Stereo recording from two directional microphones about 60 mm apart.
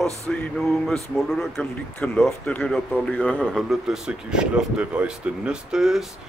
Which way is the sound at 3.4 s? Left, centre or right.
Centre.